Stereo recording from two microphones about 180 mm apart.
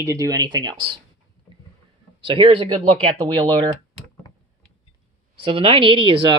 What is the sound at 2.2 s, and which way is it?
Speech, 30° right (ahead or behind).